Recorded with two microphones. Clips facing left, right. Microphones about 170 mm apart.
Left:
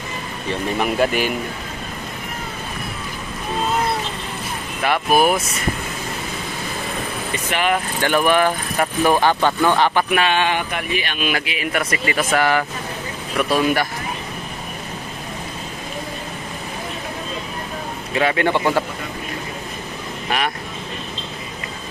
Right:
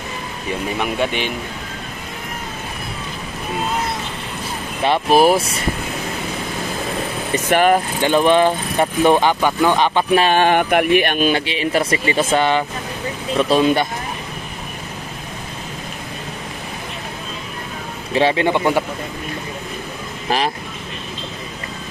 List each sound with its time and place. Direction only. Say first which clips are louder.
0.7 s speech: left 3 dB; centre (ahead or behind)
4.8 s speech: right 3 dB; 25° right (ahead or behind)
7.4 s a sound: right 6 dB; 45° right (ahead or behind)
8.0 s speech: right 2 dB; 20° right (ahead or behind)
10.1 s a sound: right 5 dB; 40° right (ahead or behind); by 11.1 s 60° right (ahead or behind)
11.1 s speech: right 6 dB; 30° right (ahead or behind)
18.1 s a man's voice: right 3 dB; 30° right (ahead or behind)
18.4 s a man's voice: right 1 dB; 15° right (ahead or behind)
20.2 s speech: right 3 dB; 30° right (ahead or behind)